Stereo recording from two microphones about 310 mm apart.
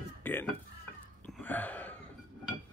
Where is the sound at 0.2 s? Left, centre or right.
Centre.